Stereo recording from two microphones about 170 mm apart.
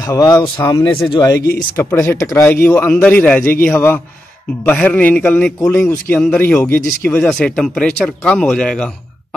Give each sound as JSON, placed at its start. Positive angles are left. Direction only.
{"t": 0.0, "sound": "speech", "side_deg": 20}